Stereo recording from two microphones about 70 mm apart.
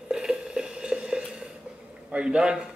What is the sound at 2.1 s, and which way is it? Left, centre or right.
Speech, centre.